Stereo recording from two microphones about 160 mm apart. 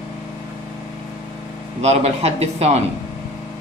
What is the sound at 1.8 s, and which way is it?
A man's voice, 40° right (ahead or behind).